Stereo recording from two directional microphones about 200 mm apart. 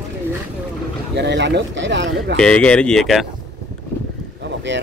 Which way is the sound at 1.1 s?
60° right (ahead or behind).